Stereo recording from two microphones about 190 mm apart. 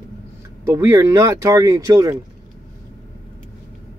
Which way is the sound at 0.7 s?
15° right (ahead or behind).